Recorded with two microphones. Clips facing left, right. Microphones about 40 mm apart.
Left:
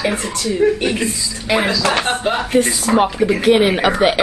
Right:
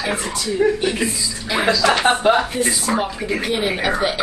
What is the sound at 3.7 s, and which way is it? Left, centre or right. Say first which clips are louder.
Speech: left 4 dB; centre.